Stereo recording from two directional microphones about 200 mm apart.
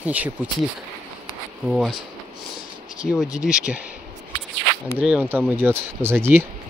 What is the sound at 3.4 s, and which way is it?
Speech, 5° right (ahead or behind).